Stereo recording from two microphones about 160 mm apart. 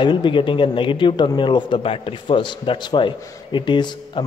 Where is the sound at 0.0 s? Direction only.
30° left (ahead or behind).